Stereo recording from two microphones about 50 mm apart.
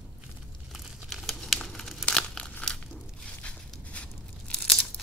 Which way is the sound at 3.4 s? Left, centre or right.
Left.